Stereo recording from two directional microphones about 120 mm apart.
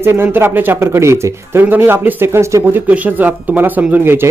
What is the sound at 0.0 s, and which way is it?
Speech, 20° right (ahead or behind).